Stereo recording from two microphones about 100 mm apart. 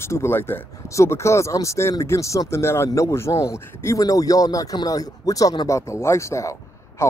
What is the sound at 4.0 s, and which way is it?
Speech, 35° left (ahead or behind).